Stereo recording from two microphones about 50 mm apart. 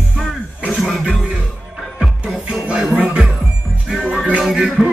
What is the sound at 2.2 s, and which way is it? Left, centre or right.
Music, right.